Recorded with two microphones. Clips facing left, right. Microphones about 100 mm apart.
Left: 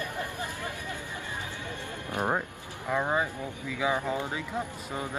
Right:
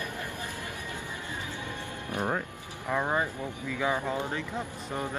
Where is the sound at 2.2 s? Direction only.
25° left (ahead or behind).